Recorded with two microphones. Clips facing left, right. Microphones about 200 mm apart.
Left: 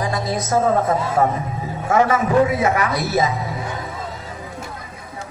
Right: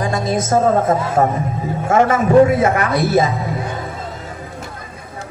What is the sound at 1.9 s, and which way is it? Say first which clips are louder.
Speech: right 3 dB; 25° right (ahead or behind).